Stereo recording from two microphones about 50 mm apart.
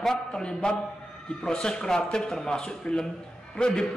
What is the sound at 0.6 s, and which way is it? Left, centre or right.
A man's voice, left.